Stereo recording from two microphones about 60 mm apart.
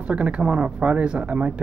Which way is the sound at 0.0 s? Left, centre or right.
Centre.